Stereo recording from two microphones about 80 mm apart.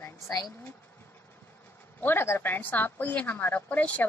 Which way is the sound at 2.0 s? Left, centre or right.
Left.